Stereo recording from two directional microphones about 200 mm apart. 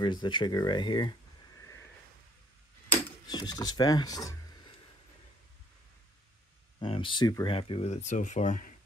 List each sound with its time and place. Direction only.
0.0 s speech: 20° left (ahead or behind)
3.3 s speech: 20° left (ahead or behind)
6.8 s speech: 25° left (ahead or behind)